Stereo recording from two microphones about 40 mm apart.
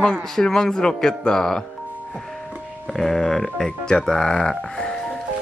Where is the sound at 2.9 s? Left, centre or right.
Centre.